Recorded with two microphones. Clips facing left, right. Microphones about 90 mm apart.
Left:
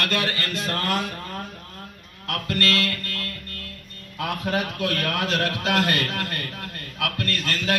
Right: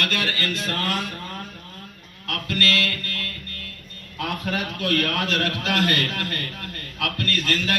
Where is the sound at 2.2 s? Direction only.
30° left (ahead or behind).